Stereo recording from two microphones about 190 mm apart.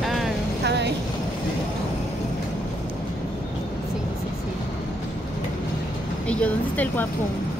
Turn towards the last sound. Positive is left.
turn(degrees=10)  # may be behind; listen again after turning